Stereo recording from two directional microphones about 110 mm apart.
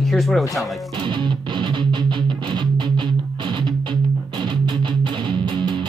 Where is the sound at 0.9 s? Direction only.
45° right (ahead or behind).